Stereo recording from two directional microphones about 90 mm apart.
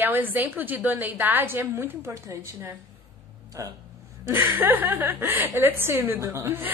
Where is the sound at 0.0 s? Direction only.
20° right (ahead or behind); by 3.7 s 35° right (ahead or behind).